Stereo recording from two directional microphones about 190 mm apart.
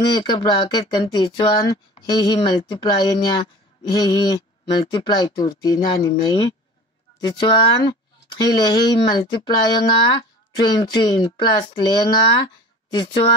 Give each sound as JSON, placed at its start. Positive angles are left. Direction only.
{"t": 0.0, "sound": "speech", "side_deg": 20}